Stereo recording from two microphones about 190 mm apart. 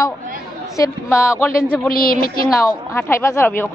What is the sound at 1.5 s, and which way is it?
A man's voice, 50° left (ahead or behind).